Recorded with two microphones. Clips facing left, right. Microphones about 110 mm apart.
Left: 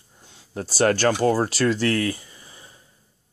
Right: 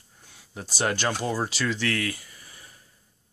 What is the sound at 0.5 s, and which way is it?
Speech, 45° left (ahead or behind).